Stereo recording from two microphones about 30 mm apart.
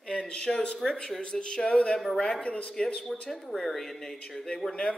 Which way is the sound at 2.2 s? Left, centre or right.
Left.